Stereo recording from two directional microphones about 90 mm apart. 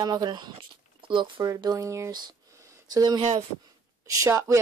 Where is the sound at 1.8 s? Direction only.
35° right (ahead or behind).